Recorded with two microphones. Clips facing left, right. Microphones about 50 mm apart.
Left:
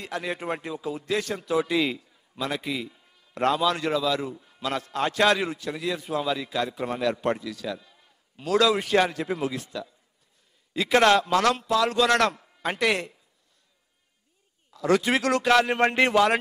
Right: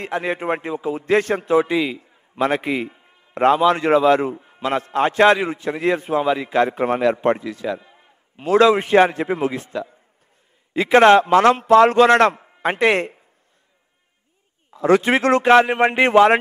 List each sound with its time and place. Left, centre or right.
0.0 s a man's voice: right
2.0 s a sound: right
2.4 s a man's voice: right
14.7 s a man's voice: right